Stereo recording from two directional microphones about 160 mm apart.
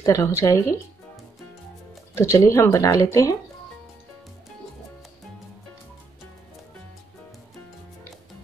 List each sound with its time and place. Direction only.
0.0 s speech: 15° left (ahead or behind)
2.1 s speech: 15° left (ahead or behind)